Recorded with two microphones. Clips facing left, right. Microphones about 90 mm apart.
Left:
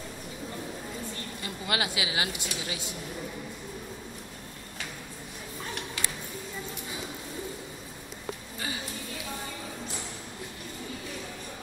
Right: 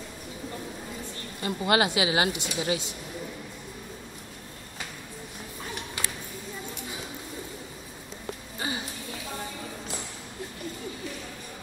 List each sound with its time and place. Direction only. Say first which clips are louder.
1.4 s a woman's voice: right 8 dB; 35° right (ahead or behind)